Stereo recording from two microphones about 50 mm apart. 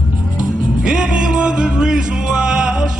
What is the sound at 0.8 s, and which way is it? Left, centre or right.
Music, centre.